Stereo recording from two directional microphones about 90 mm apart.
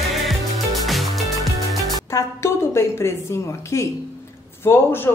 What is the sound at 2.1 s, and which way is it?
A woman's voice, 30° left (ahead or behind).